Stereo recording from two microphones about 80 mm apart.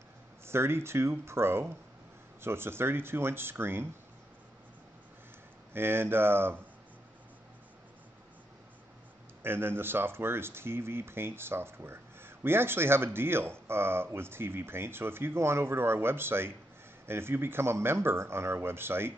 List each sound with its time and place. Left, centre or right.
0.5 s speech: right
5.7 s speech: right
9.4 s speech: right